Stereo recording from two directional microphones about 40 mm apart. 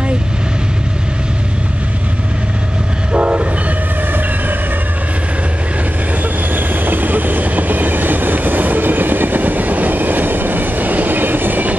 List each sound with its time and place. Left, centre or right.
3.1 s train: right
6.5 s train: right